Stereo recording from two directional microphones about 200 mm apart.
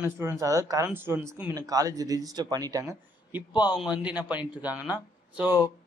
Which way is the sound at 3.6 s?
5° right (ahead or behind).